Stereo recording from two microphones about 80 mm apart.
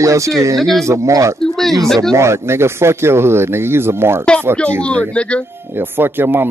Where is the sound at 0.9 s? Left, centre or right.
Right.